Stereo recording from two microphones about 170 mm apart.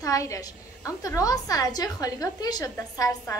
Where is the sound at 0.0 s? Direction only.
20° left (ahead or behind).